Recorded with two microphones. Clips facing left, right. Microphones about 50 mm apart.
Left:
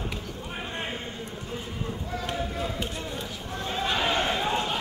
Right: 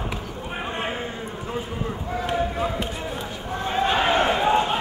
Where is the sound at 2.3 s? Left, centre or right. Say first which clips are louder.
Right 9 dB; right.